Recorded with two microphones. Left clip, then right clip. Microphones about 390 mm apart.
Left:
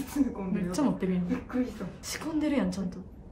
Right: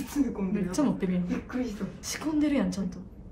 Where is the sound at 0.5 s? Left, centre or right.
Centre.